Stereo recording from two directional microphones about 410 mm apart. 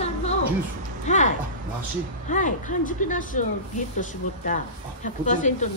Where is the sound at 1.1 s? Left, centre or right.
Centre.